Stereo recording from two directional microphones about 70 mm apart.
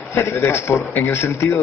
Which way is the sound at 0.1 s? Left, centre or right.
Left.